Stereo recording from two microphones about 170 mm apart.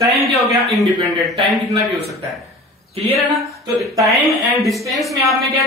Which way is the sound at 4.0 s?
Centre (ahead or behind).